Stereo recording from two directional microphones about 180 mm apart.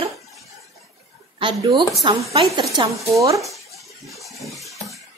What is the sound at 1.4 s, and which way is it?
A woman's voice, 20° right (ahead or behind).